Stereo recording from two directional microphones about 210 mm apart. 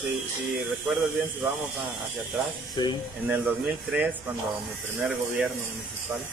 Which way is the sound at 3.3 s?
10° right (ahead or behind).